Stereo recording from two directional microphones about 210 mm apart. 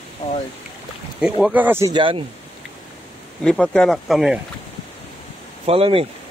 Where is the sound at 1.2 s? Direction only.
5° right (ahead or behind); by 2.2 s 25° right (ahead or behind).